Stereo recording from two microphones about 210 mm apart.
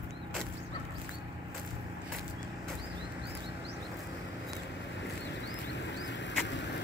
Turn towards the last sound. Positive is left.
turn(degrees=55)  # may be behind; listen again after turning